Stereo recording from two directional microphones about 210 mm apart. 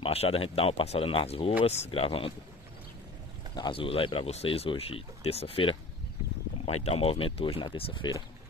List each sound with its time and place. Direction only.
0.0 s speech: 30° left (ahead or behind)
3.5 s speech: 25° left (ahead or behind)